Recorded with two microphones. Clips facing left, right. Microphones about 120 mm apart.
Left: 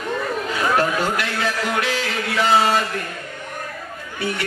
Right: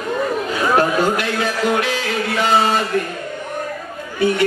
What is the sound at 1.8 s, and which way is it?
Music, 25° right (ahead or behind).